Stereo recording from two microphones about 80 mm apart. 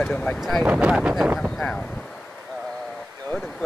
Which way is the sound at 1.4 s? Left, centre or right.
Centre.